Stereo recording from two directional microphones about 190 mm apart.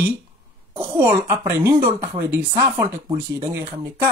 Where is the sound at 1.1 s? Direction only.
20° right (ahead or behind).